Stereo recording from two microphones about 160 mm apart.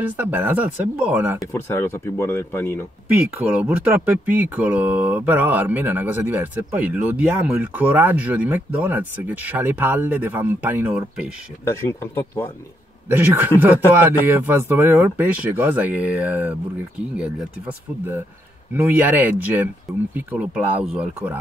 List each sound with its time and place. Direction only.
0.2 s speech: 15° right (ahead or behind)
1.5 s speech: 15° left (ahead or behind)
3.3 s speech: 10° right (ahead or behind)
11.6 s speech: 15° left (ahead or behind)
13.1 s speech: 15° right (ahead or behind)
18.8 s speech: 10° right (ahead or behind)